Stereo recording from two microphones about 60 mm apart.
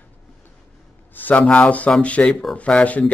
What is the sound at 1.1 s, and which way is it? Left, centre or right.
A man's voice, left.